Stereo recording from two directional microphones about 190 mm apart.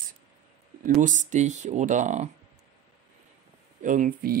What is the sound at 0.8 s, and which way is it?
Speech, 45° right (ahead or behind).